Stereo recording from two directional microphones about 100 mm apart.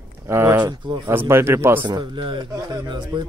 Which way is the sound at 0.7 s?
50° right (ahead or behind).